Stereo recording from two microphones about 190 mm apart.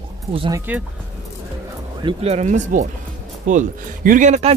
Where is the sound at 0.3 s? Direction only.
30° right (ahead or behind).